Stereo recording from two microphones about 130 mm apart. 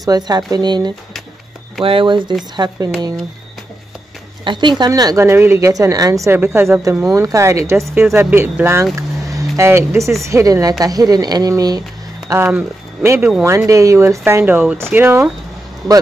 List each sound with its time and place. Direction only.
0.0 s speech: 30° right (ahead or behind)
4.5 s a woman's voice: 35° right (ahead or behind); by 15.2 s 15° right (ahead or behind)